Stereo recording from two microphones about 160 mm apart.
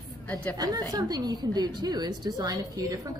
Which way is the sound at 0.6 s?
25° right (ahead or behind).